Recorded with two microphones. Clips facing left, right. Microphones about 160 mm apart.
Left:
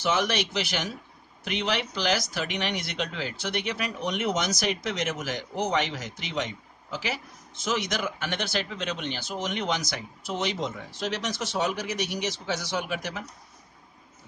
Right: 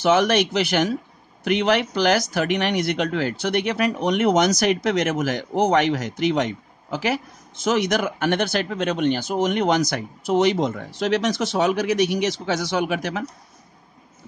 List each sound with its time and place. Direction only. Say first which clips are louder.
0.0 s speech: right 9 dB; 55° right (ahead or behind)